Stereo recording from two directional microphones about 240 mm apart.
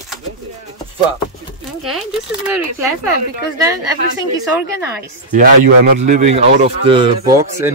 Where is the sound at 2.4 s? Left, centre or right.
Centre.